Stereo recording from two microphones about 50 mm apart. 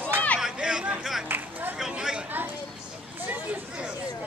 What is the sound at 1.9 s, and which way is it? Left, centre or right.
Chatter, centre.